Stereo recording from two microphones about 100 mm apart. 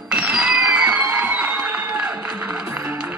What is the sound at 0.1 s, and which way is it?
Music, 10° right (ahead or behind).